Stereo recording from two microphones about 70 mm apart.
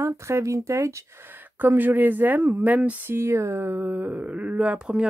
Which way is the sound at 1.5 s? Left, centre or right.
Right.